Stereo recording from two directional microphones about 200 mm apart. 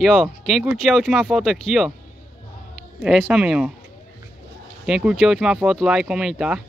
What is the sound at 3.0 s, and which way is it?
Speech, centre (ahead or behind).